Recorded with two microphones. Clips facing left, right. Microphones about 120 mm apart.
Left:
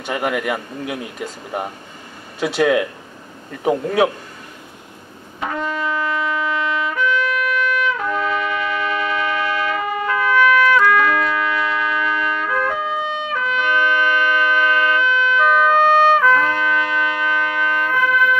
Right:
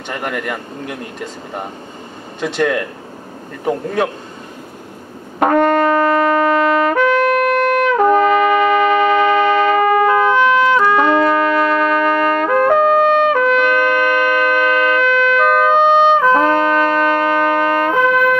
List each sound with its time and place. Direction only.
0.0 s speech: 5° left (ahead or behind)
5.4 s brass instrument: 60° right (ahead or behind)
10.3 s trumpet: 25° right (ahead or behind)
11.2 s trumpet: 50° right (ahead or behind)
14.5 s siren: 50° right (ahead or behind)
16.2 s trumpet: 35° right (ahead or behind); by 18.3 s 50° right (ahead or behind)